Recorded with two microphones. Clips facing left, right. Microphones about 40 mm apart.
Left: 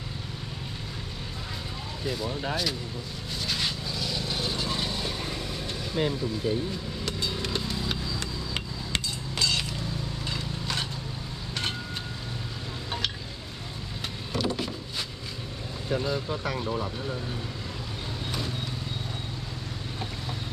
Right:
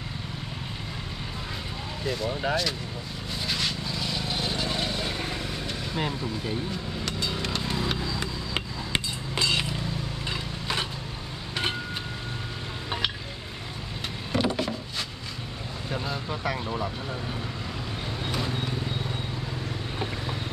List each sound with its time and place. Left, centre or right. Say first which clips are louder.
3.8 s vehicle: right 1 dB; centre
7.6 s vehicle: right 3 dB; right
8.0 s hammer: right 2 dB; centre
10.3 s a sound: right 2 dB; centre
14.3 s a sound: right 3 dB; centre
15.9 s speech: left 4 dB; centre
18.4 s vehicle: right 3 dB; right